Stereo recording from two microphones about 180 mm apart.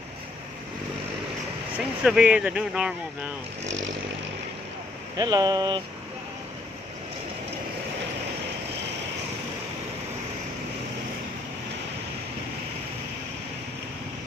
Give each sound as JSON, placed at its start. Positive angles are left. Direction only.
{"t": 1.8, "sound": "speech", "side_deg": -5}
{"t": 5.1, "sound": "speech", "side_deg": -20}